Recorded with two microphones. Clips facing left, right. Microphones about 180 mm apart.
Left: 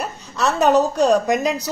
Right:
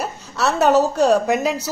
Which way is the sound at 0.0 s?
5° right (ahead or behind).